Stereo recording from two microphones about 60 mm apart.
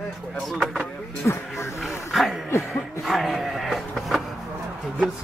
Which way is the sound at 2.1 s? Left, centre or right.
Centre.